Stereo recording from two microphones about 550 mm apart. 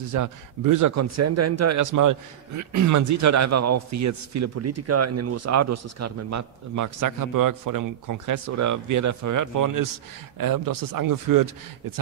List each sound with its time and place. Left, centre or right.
0.1 s a man's voice: right